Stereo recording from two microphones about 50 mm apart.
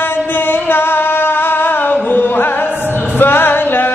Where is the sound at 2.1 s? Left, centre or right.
Left.